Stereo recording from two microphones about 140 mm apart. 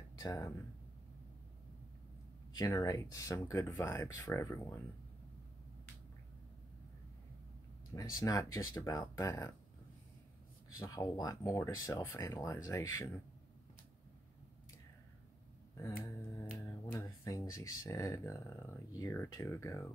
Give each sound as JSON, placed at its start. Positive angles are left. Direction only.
{"t": 0.2, "sound": "speech", "side_deg": 25}
{"t": 2.5, "sound": "speech", "side_deg": 25}
{"t": 7.9, "sound": "speech", "side_deg": 25}
{"t": 10.8, "sound": "speech", "side_deg": 25}
{"t": 16.5, "sound": "speech", "side_deg": 20}